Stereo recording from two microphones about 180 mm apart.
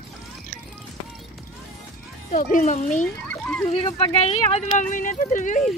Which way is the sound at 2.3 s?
45° left (ahead or behind).